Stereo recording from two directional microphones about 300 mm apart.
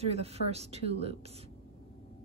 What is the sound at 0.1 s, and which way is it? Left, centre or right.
Speech, right.